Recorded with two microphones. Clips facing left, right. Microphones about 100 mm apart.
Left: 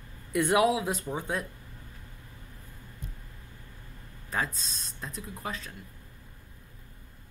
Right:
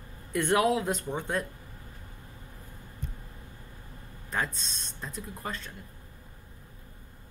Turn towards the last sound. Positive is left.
turn(degrees=0)  # may be behind; listen again after turning